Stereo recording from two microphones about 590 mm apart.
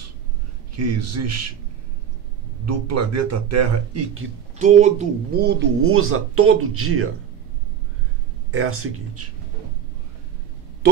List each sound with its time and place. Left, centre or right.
0.7 s speech: right
2.6 s speech: right
4.6 s speech: centre
8.5 s speech: right